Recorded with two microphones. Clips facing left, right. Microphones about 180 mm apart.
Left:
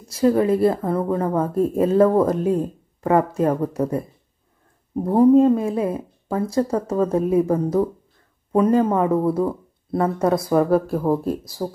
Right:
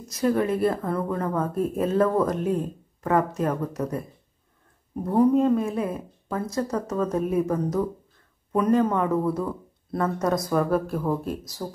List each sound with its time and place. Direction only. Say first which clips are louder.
0.1 s a woman's voice: left 6 dB; 25° left (ahead or behind)